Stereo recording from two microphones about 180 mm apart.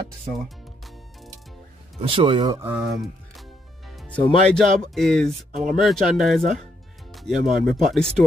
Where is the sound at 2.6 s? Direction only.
10° right (ahead or behind).